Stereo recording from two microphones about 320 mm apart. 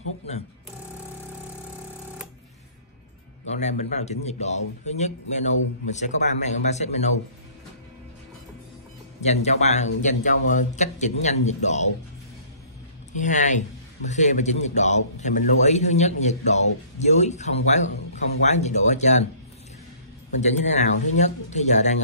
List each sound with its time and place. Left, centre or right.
3.4 s a man's voice: left
9.2 s a man's voice: left
13.1 s a man's voice: left
20.3 s a man's voice: left